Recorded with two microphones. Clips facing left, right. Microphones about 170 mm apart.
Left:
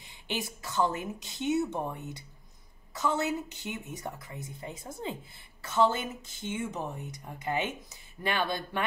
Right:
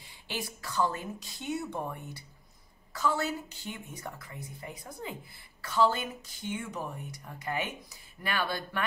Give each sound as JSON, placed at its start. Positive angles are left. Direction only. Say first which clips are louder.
{"t": 0.0, "sound": "speech", "louder": "left 3 dB", "side_deg": 20}